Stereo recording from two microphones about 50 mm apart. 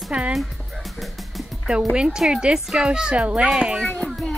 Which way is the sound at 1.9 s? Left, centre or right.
Centre.